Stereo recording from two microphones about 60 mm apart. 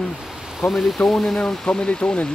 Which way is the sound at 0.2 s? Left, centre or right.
Centre.